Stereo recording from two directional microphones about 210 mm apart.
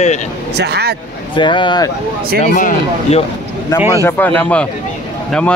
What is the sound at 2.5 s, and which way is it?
Speech, 35° left (ahead or behind).